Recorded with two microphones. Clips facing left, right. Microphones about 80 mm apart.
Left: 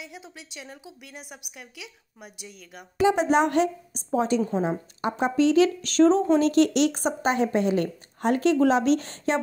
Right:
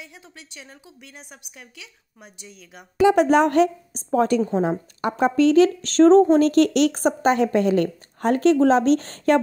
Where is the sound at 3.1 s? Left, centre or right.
Right.